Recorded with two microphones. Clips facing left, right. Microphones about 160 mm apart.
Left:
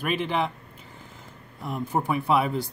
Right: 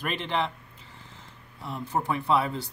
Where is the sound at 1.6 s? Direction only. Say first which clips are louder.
Left 2 dB; 15° left (ahead or behind).